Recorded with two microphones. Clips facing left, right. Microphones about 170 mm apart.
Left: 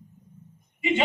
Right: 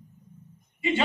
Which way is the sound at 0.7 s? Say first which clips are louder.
Left 1 dB; 20° left (ahead or behind).